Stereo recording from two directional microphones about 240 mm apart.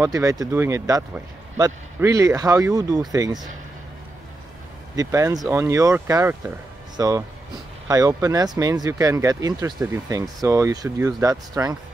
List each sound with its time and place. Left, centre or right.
0.0 s speech: centre
4.9 s speech: centre